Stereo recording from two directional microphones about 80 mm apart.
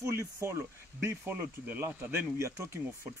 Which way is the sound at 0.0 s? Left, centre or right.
Right.